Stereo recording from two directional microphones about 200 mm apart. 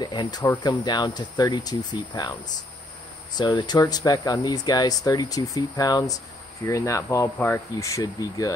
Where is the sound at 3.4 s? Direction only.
20° left (ahead or behind).